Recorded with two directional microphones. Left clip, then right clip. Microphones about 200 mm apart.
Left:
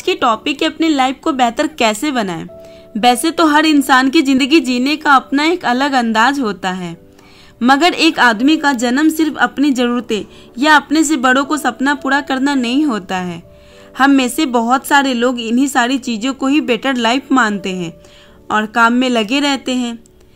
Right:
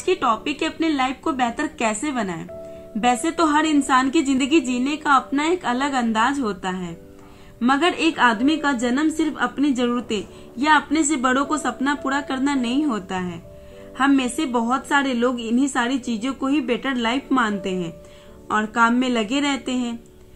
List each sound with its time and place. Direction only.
0.0 s a woman's voice: 50° left (ahead or behind)